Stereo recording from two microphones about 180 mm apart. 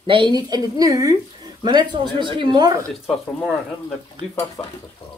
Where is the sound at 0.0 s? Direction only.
25° right (ahead or behind).